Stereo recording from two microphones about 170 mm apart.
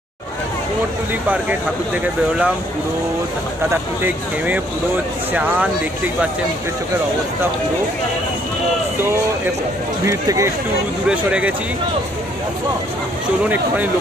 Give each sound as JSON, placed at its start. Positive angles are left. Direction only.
{"t": 10.0, "sound": "speech", "side_deg": -15}
{"t": 11.1, "sound": "speech", "side_deg": -5}